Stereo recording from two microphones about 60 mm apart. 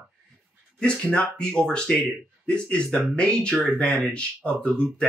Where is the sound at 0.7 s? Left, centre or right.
Centre.